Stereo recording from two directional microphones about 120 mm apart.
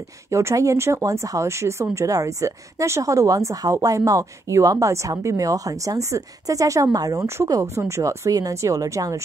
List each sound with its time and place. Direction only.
0.3 s speech: 25° right (ahead or behind)